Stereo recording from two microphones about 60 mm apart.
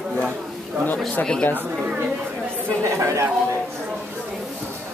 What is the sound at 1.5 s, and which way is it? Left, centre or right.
Speech, right.